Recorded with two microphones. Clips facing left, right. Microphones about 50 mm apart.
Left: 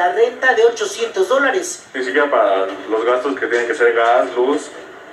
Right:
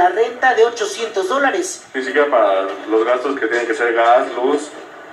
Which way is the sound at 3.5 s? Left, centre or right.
Left.